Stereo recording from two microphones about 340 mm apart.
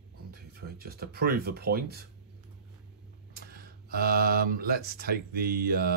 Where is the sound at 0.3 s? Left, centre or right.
Right.